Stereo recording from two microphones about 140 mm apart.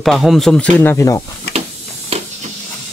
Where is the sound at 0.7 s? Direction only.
15° left (ahead or behind).